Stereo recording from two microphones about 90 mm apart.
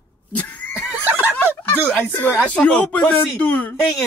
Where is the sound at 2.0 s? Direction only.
20° left (ahead or behind).